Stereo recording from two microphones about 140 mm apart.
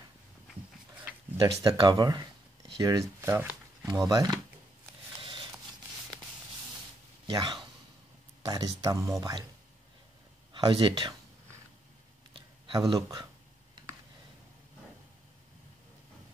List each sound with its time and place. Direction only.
1.4 s speech: 30° right (ahead or behind)
4.1 s speech: 25° right (ahead or behind)
7.2 s speech: 30° right (ahead or behind)
10.5 s speech: 35° right (ahead or behind)
12.4 s a sound: 35° right (ahead or behind)
12.9 s speech: 30° right (ahead or behind)